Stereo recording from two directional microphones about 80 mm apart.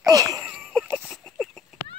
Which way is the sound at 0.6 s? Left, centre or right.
Centre.